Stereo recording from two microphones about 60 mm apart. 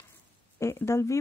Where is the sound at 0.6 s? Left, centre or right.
Left.